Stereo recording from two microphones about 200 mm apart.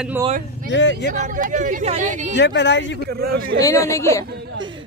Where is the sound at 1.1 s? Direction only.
40° right (ahead or behind).